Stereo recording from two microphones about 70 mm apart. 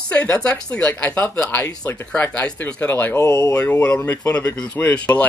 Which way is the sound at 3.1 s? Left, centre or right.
Left.